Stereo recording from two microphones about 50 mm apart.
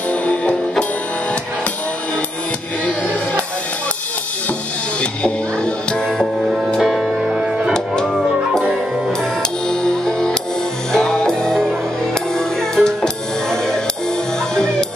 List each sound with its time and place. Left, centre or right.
0.1 s music: left
2.8 s music: left
5.0 s music: left
6.8 s music: centre
7.1 s music: centre
7.7 s music: centre
9.2 s music: centre